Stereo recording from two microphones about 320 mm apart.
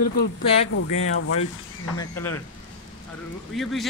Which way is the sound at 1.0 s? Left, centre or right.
Left.